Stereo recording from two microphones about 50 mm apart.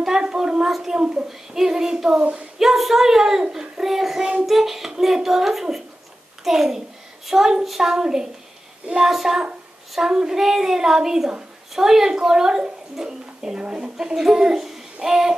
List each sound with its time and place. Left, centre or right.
0.0 s a sound: centre
1.0 s a woman's voice: centre
9.1 s a child's voice: centre